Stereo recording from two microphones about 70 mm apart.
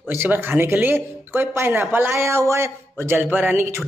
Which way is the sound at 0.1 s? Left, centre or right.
Right.